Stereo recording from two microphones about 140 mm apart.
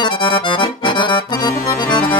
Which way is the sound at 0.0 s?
35° left (ahead or behind).